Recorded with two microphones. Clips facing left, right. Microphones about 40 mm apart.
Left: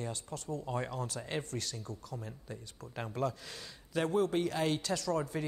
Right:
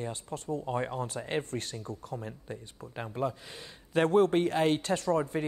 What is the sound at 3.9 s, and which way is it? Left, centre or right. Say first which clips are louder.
A man's voice: right 7 dB; right.